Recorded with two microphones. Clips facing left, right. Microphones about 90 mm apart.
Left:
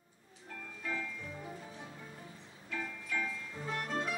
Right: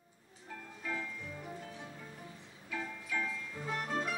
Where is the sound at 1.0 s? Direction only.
10° right (ahead or behind).